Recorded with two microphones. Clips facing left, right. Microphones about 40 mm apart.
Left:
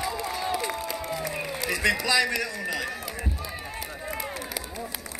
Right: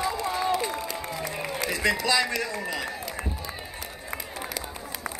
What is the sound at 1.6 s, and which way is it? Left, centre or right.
A man's voice, centre.